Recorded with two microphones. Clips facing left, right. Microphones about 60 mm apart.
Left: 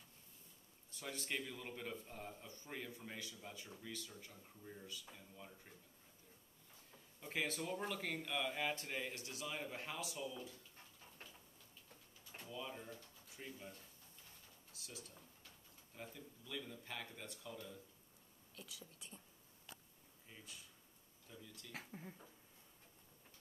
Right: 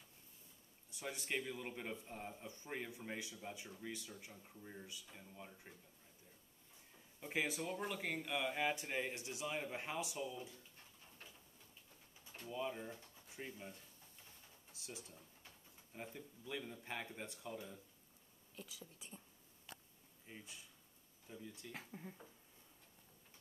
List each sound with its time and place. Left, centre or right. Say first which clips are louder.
0.9 s a man's voice: right 2 dB; centre
7.2 s speech: right 2 dB; centre
12.4 s speech: right 5 dB; right
14.7 s drawer open or close: right 2 dB; right
15.4 s speech: right 1 dB; right
18.6 s speech: right 2 dB; centre
20.2 s a man's voice: right 3 dB; right
21.7 s speech: even; centre